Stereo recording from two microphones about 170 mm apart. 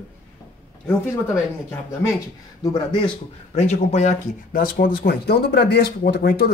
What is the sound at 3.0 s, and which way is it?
Speech, 40° left (ahead or behind).